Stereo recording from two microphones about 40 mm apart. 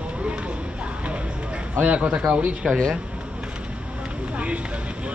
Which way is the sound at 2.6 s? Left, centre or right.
Centre.